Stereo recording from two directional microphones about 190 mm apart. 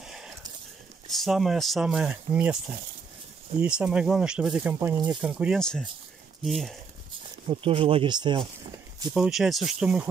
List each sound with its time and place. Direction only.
0.0 s a sound: 5° right (ahead or behind)
1.0 s speech: centre (ahead or behind)
3.6 s speech: 5° right (ahead or behind)
7.4 s speech: 30° right (ahead or behind)
9.1 s speech: centre (ahead or behind)